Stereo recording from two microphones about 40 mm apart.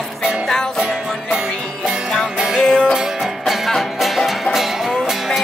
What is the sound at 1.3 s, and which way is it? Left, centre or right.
Music, centre.